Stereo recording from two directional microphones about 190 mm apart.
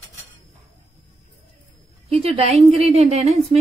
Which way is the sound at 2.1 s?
30° right (ahead or behind).